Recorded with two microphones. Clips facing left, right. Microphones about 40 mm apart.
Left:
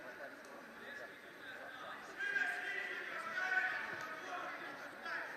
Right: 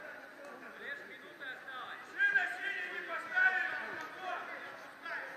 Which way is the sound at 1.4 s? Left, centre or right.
Right.